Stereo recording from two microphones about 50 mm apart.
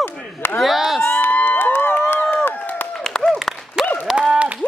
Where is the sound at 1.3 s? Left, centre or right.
Left.